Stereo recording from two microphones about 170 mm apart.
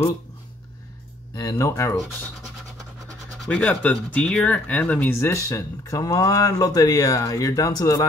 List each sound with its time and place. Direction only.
1.3 s speech: 20° left (ahead or behind)
3.3 s speech: 5° left (ahead or behind)